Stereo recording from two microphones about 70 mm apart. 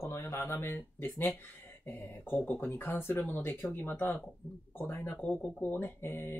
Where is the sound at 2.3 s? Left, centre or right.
Left.